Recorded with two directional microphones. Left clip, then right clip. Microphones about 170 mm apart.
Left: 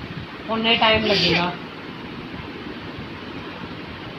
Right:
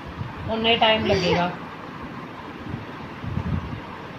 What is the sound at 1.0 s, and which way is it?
Speech, 35° right (ahead or behind).